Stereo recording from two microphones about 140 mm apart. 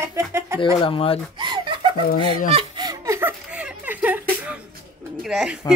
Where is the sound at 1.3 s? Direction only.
30° right (ahead or behind).